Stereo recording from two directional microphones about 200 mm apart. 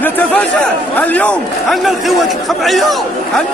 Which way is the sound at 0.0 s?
10° left (ahead or behind).